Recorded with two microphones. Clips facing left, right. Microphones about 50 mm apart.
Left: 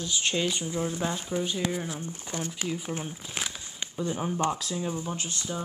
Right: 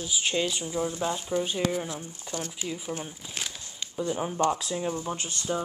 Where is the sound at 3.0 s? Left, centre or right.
Centre.